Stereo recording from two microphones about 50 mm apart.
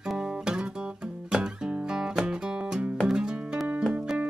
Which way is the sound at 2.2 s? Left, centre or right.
Centre.